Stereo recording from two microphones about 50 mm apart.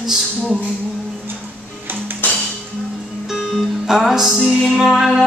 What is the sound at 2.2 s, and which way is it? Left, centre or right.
Music, left.